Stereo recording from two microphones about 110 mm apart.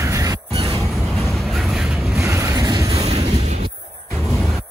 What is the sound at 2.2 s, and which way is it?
Vehicle, 25° right (ahead or behind).